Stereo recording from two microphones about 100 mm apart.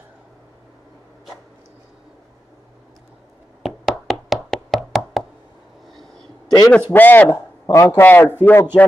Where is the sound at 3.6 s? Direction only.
Centre (ahead or behind).